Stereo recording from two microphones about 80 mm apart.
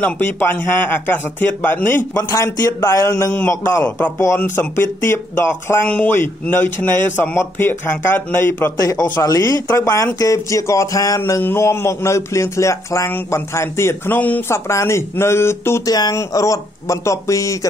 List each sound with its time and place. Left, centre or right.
0.0 s speech: left
2.1 s a man's voice: left
9.1 s speech: left
9.7 s a man's voice: left
14.5 s a man's voice: left
15.8 s a man's voice: left